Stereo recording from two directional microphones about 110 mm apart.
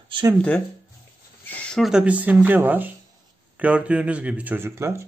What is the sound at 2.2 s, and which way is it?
Speech, 15° right (ahead or behind).